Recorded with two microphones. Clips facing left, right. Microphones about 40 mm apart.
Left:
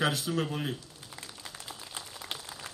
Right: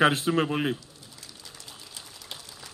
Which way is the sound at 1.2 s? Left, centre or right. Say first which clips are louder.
Left 3 dB; left.